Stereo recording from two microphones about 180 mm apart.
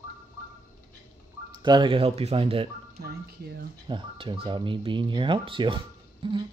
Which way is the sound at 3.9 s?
25° right (ahead or behind).